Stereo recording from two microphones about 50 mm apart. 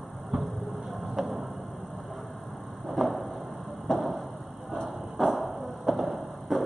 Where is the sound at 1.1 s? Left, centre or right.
Centre.